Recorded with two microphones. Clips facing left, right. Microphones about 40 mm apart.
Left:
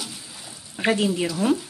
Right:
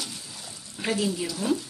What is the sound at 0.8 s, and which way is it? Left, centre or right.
Speech, left.